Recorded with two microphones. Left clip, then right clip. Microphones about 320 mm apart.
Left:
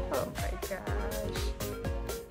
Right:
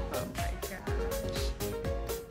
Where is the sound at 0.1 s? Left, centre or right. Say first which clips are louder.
Left 4 dB; centre.